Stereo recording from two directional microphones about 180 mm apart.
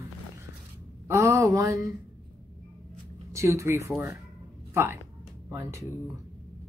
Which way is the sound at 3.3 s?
15° right (ahead or behind).